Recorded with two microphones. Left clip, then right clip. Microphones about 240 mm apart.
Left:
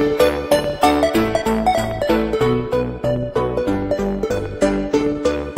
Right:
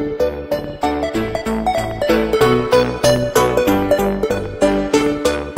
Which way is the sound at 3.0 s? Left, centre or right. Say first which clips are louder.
Right 6 dB; right.